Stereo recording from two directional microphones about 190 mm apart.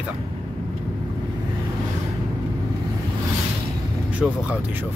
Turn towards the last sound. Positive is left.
turn(degrees=0)  # may be behind; listen again after turning